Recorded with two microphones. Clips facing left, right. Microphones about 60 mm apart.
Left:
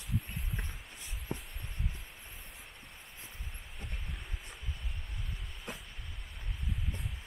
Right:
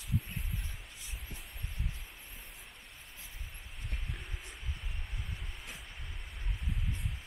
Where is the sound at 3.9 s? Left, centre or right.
Centre.